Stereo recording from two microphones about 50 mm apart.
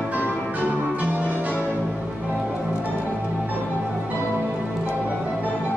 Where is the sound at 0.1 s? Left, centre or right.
Right.